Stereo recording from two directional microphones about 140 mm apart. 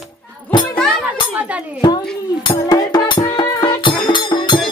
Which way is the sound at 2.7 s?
30° left (ahead or behind).